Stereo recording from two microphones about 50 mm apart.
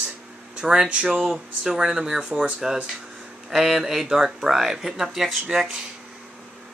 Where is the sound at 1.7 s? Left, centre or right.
Centre.